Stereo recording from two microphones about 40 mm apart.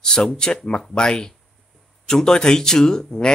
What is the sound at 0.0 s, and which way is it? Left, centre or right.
Speech, centre.